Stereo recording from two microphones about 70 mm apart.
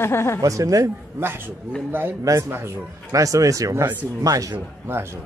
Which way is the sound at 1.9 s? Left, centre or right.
Right.